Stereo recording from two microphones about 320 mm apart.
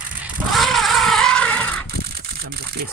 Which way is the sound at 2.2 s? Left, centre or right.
Right.